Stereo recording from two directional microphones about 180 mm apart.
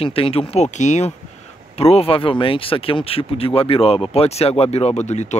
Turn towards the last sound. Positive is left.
turn(degrees=40)  # may be behind; listen again after turning